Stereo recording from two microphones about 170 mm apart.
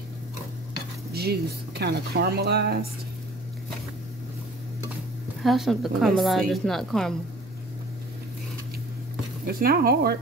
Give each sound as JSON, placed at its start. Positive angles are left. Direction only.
{"t": 1.1, "sound": "speech", "side_deg": -70}
{"t": 5.4, "sound": "a woman's voice", "side_deg": 0}
{"t": 9.5, "sound": "speech", "side_deg": -60}